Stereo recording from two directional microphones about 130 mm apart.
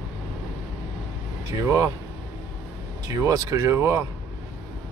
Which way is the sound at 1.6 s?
20° right (ahead or behind).